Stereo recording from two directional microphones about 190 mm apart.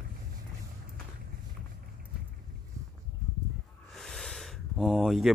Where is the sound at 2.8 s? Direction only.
15° right (ahead or behind).